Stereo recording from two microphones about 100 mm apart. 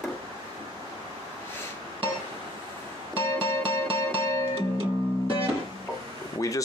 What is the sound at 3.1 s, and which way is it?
Music, 65° right (ahead or behind).